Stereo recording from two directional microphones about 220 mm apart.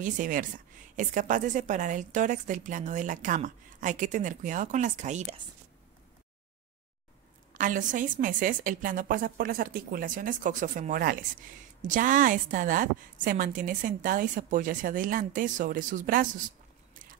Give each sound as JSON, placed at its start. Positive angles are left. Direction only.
{"t": 0.0, "sound": "a woman's voice", "side_deg": -35}
{"t": 7.5, "sound": "a woman's voice", "side_deg": -35}